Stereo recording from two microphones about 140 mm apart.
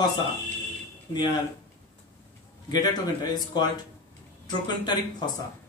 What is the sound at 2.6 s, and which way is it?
Speech, 30° left (ahead or behind).